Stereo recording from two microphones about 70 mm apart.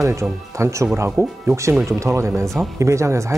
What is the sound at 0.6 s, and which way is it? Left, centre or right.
Speech, right.